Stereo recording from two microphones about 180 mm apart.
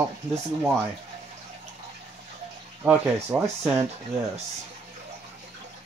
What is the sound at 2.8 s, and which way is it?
Speech, 10° right (ahead or behind).